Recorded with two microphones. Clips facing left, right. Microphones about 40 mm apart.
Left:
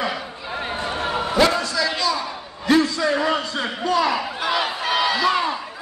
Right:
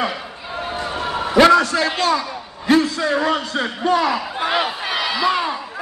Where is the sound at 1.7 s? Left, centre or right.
Right.